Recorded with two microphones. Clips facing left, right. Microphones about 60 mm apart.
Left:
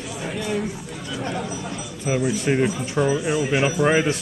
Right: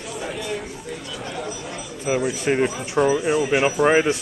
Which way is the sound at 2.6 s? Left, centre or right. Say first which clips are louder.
Right 1 dB; centre.